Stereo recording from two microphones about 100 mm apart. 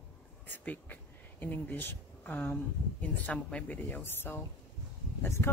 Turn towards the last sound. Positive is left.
turn(degrees=25)  # may be behind; listen again after turning